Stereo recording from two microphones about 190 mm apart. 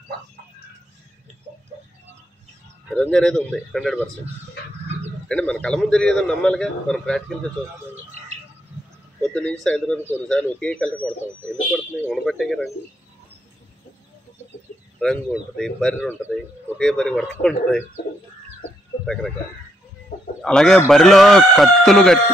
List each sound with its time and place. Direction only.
3.0 s a man's voice: 5° left (ahead or behind)
5.3 s a man's voice: 5° left (ahead or behind)
9.2 s a man's voice: 5° left (ahead or behind)
15.0 s a man's voice: 5° left (ahead or behind)
20.1 s chicken: 60° left (ahead or behind)
20.4 s a man's voice: 5° left (ahead or behind)